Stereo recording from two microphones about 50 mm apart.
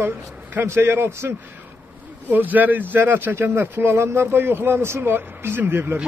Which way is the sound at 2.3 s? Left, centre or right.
Right.